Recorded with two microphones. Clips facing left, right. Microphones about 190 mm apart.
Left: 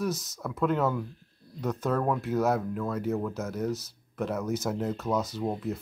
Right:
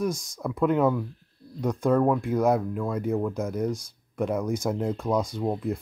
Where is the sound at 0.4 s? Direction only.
15° right (ahead or behind).